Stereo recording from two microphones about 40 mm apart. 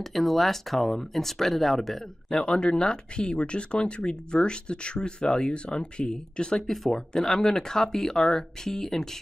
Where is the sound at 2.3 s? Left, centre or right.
Centre.